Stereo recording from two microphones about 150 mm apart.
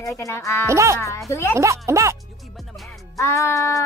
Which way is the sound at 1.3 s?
20° left (ahead or behind).